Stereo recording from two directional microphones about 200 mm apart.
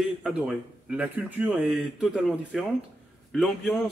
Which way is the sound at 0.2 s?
5° right (ahead or behind).